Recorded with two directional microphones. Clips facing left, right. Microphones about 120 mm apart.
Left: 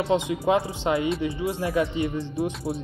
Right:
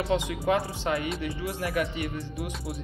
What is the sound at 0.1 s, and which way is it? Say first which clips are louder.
Speech: left 4 dB; 20° left (ahead or behind).